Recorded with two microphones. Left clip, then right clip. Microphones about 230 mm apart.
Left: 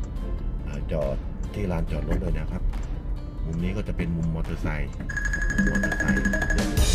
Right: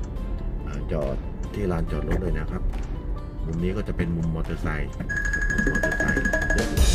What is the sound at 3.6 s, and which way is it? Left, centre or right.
Speech, left.